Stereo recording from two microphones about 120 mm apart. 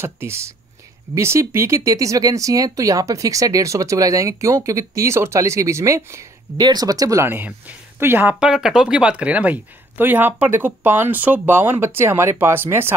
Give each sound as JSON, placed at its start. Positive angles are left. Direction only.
{"t": 0.0, "sound": "speech", "side_deg": -20}